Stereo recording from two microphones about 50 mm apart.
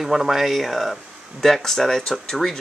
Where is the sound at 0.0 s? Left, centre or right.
Centre.